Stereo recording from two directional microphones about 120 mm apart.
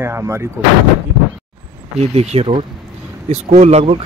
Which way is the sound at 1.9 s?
60° right (ahead or behind).